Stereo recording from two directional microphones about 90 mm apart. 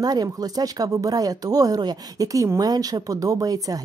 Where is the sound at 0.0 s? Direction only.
45° right (ahead or behind).